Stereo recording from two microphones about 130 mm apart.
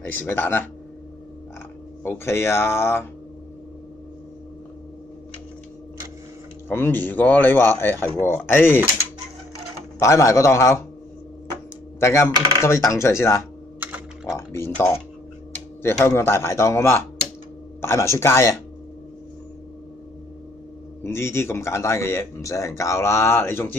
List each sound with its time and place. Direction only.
0.0 s speech: 15° left (ahead or behind)
2.0 s a man's voice: 20° left (ahead or behind)
6.7 s speech: 15° left (ahead or behind)
9.9 s a man's voice: 25° left (ahead or behind)
12.0 s a man's voice: 20° left (ahead or behind)
21.0 s a man's voice: 20° left (ahead or behind)